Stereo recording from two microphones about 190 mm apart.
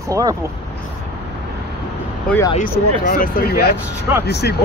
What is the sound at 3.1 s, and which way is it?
Speech, 50° left (ahead or behind).